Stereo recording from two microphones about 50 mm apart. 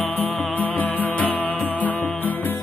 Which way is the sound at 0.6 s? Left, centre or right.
Left.